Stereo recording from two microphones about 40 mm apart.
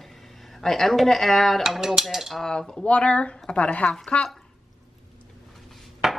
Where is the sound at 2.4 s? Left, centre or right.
Centre.